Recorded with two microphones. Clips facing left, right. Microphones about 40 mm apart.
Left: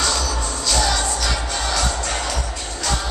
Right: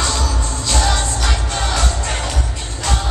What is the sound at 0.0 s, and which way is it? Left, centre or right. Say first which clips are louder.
Music: right 1 dB; right.